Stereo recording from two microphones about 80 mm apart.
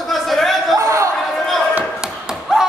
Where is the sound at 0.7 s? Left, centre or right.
Right.